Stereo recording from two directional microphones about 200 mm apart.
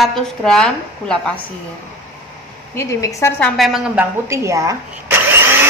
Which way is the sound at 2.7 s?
15° left (ahead or behind).